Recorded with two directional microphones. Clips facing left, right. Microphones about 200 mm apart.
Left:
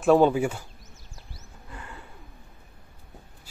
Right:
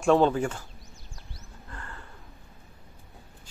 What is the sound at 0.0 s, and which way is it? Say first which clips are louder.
Speech: left 2 dB; 5° left (ahead or behind).